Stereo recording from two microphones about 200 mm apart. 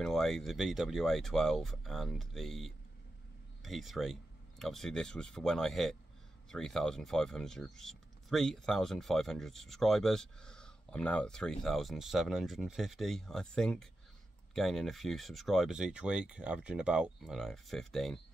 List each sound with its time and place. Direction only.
0.0 s speech: centre (ahead or behind)